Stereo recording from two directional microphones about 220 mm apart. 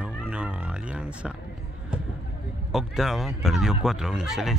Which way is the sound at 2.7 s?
Centre (ahead or behind).